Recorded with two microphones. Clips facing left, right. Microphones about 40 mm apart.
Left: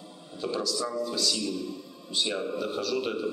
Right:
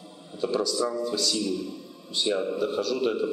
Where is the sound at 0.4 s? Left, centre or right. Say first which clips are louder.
Right 4 dB; centre.